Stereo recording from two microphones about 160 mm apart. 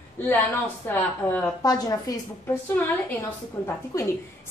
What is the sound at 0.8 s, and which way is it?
Speech, 10° left (ahead or behind).